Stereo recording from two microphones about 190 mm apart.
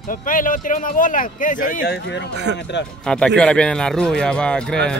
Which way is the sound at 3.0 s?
5° left (ahead or behind).